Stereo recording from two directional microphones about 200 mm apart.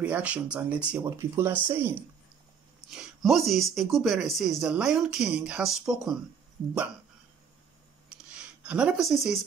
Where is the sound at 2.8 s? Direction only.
Centre (ahead or behind).